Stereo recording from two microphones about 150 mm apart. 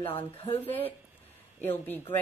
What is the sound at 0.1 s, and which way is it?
Speech, 40° left (ahead or behind).